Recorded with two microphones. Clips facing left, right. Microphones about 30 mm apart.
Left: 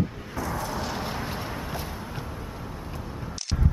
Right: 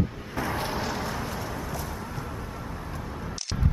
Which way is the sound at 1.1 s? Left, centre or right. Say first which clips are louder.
Even; left.